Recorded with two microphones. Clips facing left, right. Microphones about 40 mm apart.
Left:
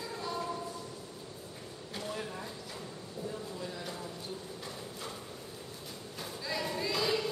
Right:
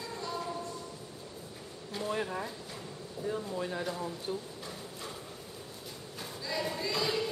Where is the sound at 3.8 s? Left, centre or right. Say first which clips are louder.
Right 5 dB; centre.